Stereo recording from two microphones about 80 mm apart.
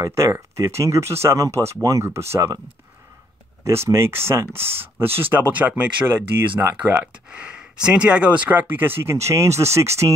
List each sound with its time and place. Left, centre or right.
0.0 s speech: right
3.6 s speech: right; by 6.6 s centre
6.6 s speech: right
7.2 s speech: centre; by 10.1 s right